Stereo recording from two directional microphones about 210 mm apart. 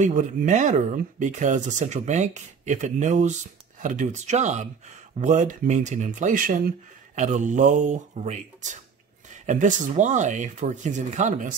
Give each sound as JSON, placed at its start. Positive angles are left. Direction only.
{"t": 0.0, "sound": "speech", "side_deg": -35}